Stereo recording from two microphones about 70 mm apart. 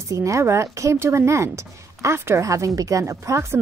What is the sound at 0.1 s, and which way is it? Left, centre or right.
Speech, right.